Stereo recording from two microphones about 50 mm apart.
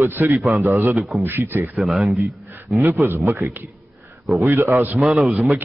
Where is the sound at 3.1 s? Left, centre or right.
Right.